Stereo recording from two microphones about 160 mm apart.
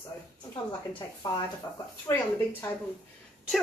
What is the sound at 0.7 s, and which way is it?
Speech, 30° left (ahead or behind).